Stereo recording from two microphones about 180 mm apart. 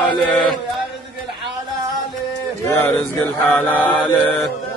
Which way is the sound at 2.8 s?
5° left (ahead or behind).